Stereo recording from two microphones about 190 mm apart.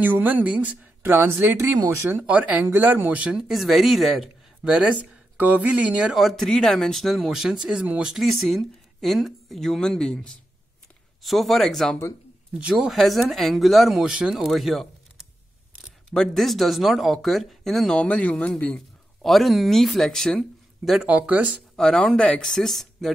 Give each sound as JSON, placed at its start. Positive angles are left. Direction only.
{"t": 0.0, "sound": "a woman's voice", "side_deg": -10}
{"t": 16.1, "sound": "speech", "side_deg": 0}
{"t": 21.8, "sound": "speech", "side_deg": 5}